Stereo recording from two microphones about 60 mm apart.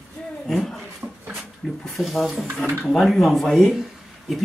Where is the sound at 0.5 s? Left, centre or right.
Centre.